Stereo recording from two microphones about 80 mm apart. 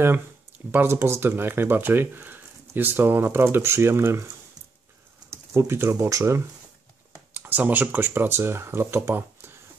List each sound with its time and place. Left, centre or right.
0.7 s speech: right
5.3 s speech: right
7.3 s speech: right